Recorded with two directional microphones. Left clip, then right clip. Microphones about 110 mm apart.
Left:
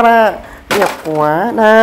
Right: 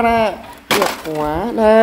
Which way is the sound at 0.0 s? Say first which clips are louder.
Left 6 dB; 25° left (ahead or behind).